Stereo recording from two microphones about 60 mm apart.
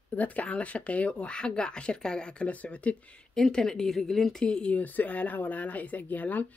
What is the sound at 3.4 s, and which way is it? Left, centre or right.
A woman's voice, centre.